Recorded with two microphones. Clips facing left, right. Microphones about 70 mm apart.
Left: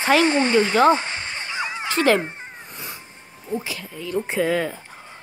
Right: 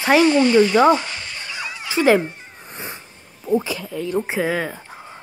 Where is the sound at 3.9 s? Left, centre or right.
Right.